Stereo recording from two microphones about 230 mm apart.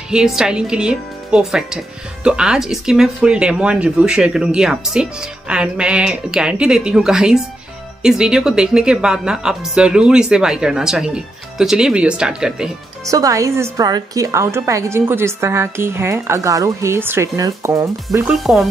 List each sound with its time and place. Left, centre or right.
0.1 s speech: centre
13.0 s a woman's voice: centre